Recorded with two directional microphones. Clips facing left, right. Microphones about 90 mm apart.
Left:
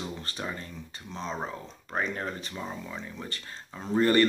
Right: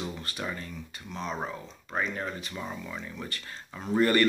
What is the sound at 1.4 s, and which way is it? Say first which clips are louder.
Speech: even; 40° left (ahead or behind).